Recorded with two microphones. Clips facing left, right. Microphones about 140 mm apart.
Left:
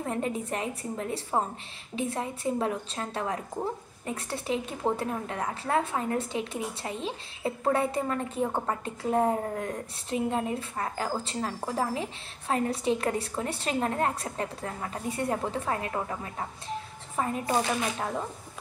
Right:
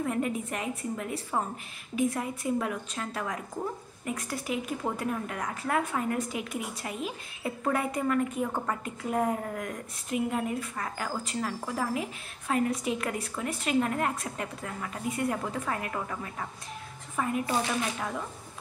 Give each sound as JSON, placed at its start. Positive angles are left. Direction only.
{"t": 0.0, "sound": "a woman's voice", "side_deg": 30}